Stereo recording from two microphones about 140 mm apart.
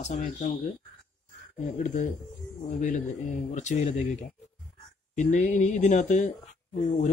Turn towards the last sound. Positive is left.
turn(degrees=60)  # may be behind; listen again after turning